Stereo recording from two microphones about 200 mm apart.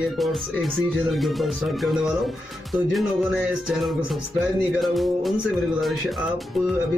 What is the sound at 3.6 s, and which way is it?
Music, centre (ahead or behind).